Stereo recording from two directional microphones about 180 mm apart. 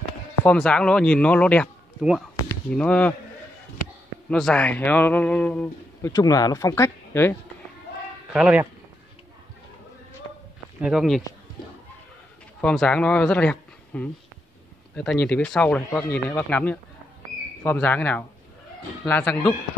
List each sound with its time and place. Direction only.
0.5 s speech: 5° left (ahead or behind)
4.3 s speech: 5° left (ahead or behind)
6.1 s speech: 20° left (ahead or behind)
8.3 s speech: 5° right (ahead or behind)
10.8 s speech: 5° right (ahead or behind)
12.5 s speech: 5° left (ahead or behind)